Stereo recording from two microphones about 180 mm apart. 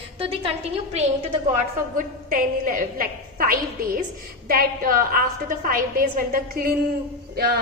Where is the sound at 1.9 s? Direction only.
50° right (ahead or behind).